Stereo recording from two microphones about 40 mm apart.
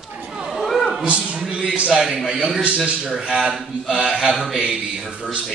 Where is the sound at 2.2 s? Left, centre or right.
Centre.